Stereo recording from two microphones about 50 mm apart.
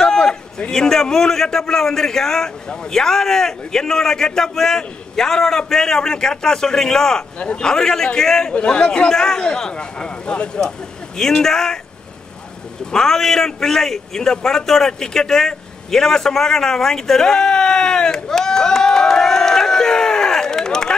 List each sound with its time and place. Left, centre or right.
0.0 s a man's voice: centre
8.5 s a man's voice: left
12.9 s a man's voice: centre